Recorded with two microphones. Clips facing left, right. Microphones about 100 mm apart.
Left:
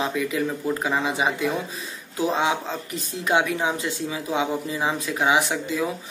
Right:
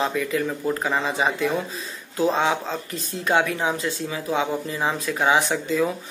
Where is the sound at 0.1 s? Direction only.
15° left (ahead or behind).